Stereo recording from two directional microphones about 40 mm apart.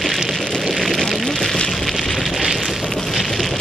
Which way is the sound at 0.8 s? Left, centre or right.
Centre.